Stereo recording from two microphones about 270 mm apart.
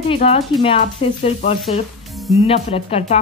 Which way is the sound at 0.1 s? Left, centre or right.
Left.